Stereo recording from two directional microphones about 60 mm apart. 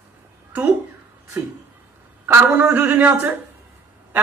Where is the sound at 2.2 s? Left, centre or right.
Right.